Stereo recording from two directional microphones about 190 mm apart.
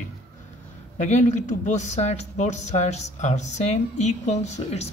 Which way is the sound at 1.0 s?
35° left (ahead or behind).